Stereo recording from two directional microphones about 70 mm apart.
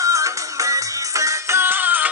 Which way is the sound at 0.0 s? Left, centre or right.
Right.